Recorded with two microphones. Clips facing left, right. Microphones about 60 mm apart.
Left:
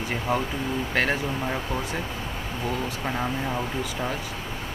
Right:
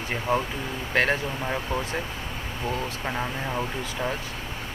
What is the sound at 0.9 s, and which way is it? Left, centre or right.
Speech, right.